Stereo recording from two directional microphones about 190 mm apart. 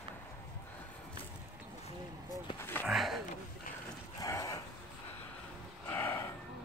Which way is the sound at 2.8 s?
Centre (ahead or behind).